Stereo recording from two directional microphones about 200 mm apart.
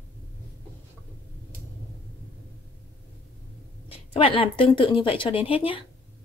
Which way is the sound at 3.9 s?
25° left (ahead or behind).